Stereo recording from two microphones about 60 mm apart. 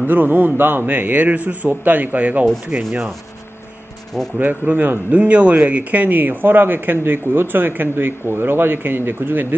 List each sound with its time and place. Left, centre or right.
0.0 s a man's voice: right
4.4 s speech: right